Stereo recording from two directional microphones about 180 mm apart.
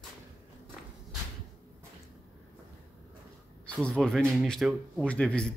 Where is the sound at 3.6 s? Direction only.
5° left (ahead or behind).